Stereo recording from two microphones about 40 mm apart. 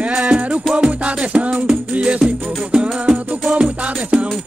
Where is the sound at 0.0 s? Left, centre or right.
Right.